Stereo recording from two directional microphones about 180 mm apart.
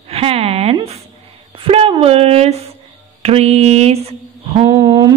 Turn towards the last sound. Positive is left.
turn(degrees=-20)  # may be behind; listen again after turning